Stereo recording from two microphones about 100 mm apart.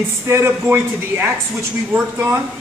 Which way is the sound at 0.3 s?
25° right (ahead or behind).